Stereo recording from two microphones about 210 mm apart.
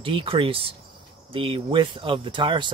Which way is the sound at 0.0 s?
25° right (ahead or behind).